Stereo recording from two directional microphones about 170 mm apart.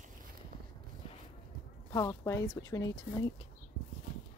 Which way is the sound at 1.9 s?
20° left (ahead or behind).